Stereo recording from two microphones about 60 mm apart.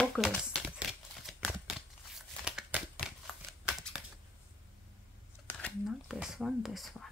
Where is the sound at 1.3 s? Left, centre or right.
Centre.